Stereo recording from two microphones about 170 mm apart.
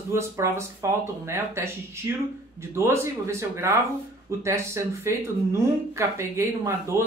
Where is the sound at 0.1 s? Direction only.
15° right (ahead or behind).